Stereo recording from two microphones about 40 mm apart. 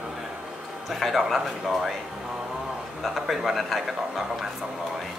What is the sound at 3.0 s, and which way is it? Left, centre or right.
A man's voice, centre.